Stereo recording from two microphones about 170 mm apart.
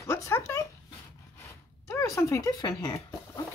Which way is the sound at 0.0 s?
15° left (ahead or behind).